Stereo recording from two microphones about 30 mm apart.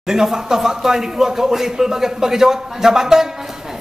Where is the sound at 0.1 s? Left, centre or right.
Centre.